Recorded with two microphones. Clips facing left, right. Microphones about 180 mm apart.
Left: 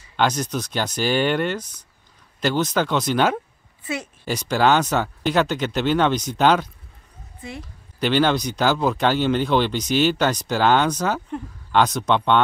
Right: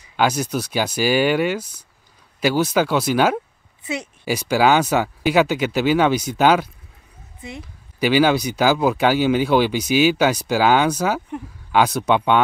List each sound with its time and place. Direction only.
0.0 s speech: 10° right (ahead or behind)
3.8 s speech: 15° right (ahead or behind)
7.4 s speech: 20° right (ahead or behind)
8.0 s speech: 10° right (ahead or behind)